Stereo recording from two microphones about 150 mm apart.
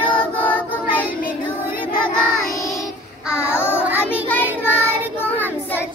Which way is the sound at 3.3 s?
15° left (ahead or behind).